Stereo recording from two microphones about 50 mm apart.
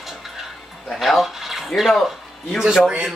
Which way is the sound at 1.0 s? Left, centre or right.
Centre.